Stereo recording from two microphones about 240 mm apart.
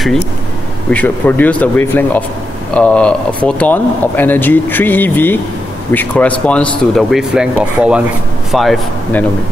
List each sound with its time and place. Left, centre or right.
0.8 s speech: centre